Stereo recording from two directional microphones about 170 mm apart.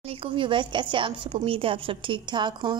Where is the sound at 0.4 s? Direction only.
30° right (ahead or behind).